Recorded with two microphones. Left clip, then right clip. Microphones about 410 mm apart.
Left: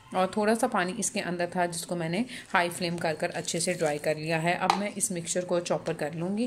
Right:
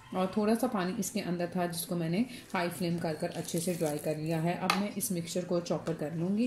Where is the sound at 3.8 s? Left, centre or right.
Left.